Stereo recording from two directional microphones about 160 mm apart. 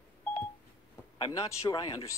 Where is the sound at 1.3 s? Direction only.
20° left (ahead or behind).